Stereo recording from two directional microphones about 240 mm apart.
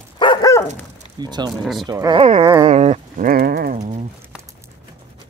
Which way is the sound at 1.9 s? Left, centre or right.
Centre.